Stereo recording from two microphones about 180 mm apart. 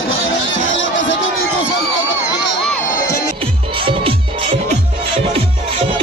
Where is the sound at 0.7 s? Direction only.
90° left.